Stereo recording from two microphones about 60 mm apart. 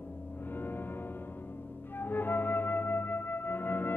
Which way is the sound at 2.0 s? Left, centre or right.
Left.